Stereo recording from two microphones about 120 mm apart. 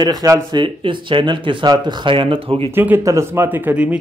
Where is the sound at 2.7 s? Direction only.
15° right (ahead or behind).